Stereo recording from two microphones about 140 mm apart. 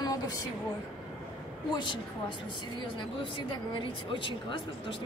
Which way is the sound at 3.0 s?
35° left (ahead or behind).